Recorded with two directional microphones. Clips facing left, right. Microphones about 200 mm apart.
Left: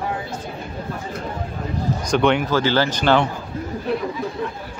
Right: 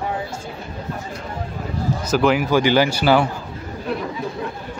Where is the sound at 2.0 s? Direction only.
5° right (ahead or behind).